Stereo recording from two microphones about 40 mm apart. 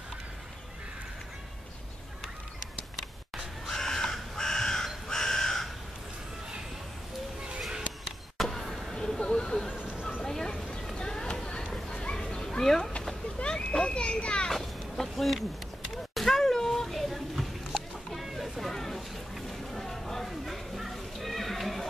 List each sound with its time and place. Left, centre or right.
3.6 s crow: centre
8.4 s vehicle: centre
8.9 s a sound: centre
12.2 s children playing: centre
13.4 s children playing: left
14.5 s a sound: centre
18.2 s boat: centre